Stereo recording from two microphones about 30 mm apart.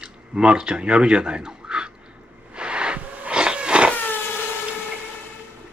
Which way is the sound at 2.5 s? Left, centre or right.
Right.